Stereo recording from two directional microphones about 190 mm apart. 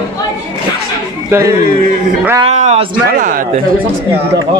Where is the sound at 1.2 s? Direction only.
15° right (ahead or behind).